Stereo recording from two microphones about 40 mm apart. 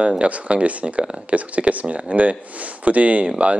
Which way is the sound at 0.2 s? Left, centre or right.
Right.